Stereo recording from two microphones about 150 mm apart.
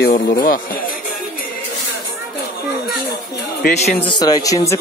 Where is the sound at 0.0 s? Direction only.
75° left (ahead or behind).